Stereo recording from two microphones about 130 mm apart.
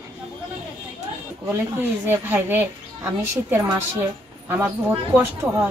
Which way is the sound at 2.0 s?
15° right (ahead or behind).